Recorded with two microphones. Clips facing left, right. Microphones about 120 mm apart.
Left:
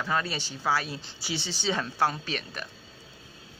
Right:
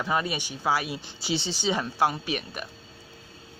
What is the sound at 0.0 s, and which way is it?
A woman's voice, 15° right (ahead or behind).